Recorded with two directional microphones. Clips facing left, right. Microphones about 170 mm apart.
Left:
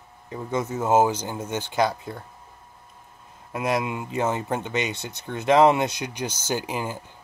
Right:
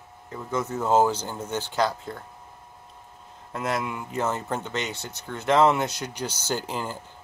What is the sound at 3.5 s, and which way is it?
Speech, 15° left (ahead or behind).